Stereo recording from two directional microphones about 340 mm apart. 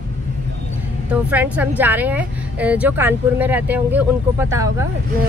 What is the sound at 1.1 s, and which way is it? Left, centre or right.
Speech, centre.